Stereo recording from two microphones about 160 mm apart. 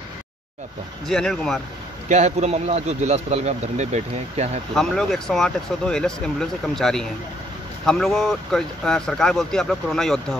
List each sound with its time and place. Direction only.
1.0 s speech: 5° left (ahead or behind)
2.0 s speech: 45° right (ahead or behind)
4.7 s speech: centre (ahead or behind)